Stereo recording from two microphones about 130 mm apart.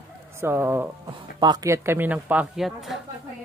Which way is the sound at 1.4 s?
35° right (ahead or behind).